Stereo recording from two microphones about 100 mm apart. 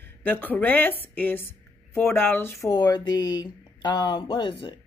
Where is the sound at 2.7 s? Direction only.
40° left (ahead or behind).